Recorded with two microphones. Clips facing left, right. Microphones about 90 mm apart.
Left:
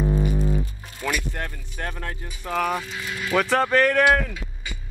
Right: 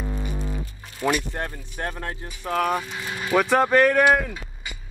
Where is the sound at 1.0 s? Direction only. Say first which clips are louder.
Right 3 dB; 20° right (ahead or behind).